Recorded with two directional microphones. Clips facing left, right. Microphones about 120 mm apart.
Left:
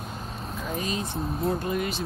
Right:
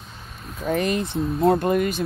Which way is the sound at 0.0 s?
40° left (ahead or behind).